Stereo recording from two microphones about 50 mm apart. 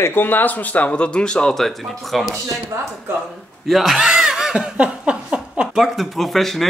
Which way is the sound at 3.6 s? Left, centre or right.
Centre.